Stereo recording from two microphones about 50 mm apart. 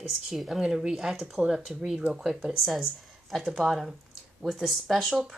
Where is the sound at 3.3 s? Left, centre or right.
Centre.